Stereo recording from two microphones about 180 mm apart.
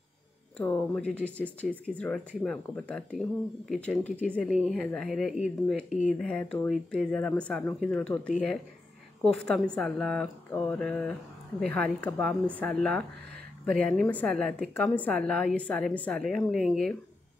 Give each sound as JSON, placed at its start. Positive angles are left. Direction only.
{"t": 0.6, "sound": "a woman's voice", "side_deg": 5}
{"t": 5.9, "sound": "speech", "side_deg": 45}
{"t": 6.1, "sound": "a woman's voice", "side_deg": 5}
{"t": 9.5, "sound": "a woman's voice", "side_deg": 5}